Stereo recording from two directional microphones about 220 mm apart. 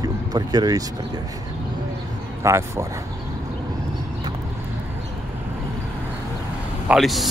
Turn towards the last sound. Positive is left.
turn(degrees=0)  # may be behind; listen again after turning